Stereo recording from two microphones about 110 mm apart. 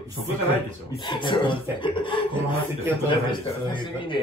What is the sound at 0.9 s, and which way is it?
Speech, 45° left (ahead or behind).